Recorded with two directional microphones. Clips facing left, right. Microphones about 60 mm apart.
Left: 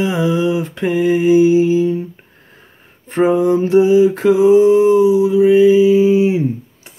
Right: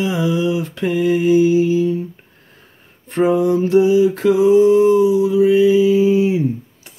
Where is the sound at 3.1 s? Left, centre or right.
Left.